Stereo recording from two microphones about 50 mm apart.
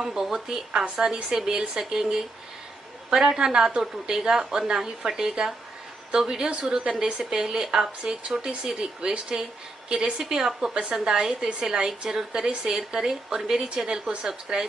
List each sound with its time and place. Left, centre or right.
0.0 s a woman's voice: centre